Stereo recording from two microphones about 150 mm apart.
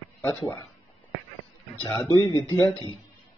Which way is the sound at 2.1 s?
30° left (ahead or behind).